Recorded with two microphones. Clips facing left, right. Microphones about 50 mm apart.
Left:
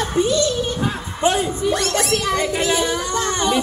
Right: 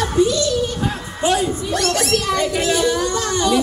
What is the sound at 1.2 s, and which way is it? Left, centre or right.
A woman's voice, left.